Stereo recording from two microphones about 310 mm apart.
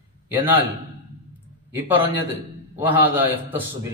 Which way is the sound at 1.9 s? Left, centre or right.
Centre.